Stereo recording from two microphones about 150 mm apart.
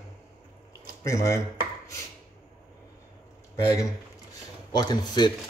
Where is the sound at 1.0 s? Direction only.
20° left (ahead or behind).